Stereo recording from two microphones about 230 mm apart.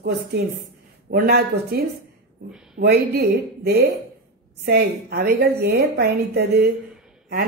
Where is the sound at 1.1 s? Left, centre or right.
Right.